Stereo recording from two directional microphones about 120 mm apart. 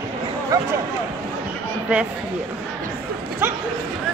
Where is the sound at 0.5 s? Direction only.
30° right (ahead or behind).